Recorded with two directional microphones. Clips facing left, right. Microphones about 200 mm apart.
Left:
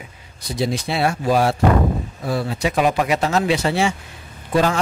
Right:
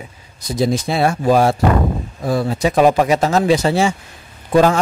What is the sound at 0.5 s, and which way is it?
Speech, 45° right (ahead or behind).